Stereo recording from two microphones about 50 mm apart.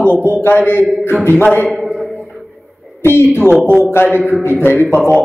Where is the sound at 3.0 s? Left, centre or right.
Left.